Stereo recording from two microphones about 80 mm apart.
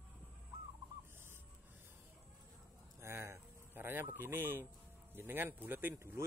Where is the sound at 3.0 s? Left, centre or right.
Right.